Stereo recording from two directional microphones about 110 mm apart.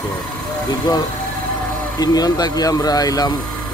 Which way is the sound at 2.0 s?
35° left (ahead or behind).